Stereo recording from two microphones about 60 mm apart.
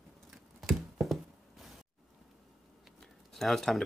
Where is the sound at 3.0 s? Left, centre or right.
Centre.